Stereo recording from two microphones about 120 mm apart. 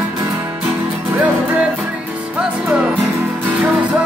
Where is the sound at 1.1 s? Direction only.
15° right (ahead or behind).